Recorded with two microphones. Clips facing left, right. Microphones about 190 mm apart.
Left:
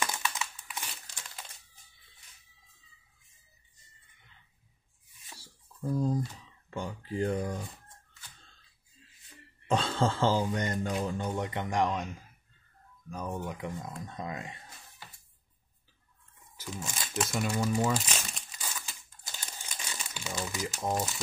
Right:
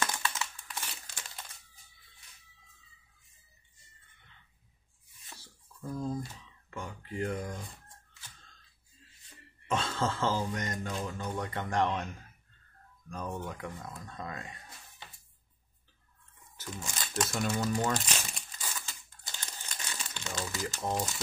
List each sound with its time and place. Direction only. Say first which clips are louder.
0.0 s crumpling: even; 15° left (ahead or behind)
5.8 s speech: left 5 dB; 35° left (ahead or behind)
9.7 s speech: left 3 dB; 30° left (ahead or behind)
11.3 s speech: right 1 dB; 20° left (ahead or behind)
13.1 s speech: left 2 dB; 10° left (ahead or behind)
16.6 s speech: left 2 dB; centre (ahead or behind)
18.9 s crumpling: even; 10° left (ahead or behind)